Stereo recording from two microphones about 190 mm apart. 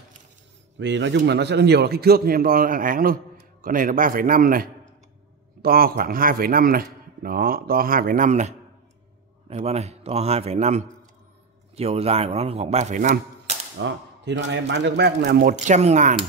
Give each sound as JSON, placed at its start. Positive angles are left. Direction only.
{"t": 0.7, "sound": "a man's voice", "side_deg": -70}
{"t": 13.7, "sound": "a man's voice", "side_deg": -70}
{"t": 15.5, "sound": "speech", "side_deg": -40}